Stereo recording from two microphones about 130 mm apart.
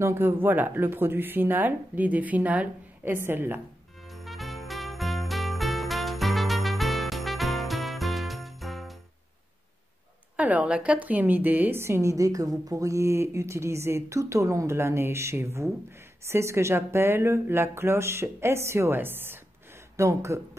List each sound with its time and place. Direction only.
0.0 s speech: 20° right (ahead or behind)
4.1 s jingle bell: centre (ahead or behind)
10.3 s a woman's voice: 10° right (ahead or behind)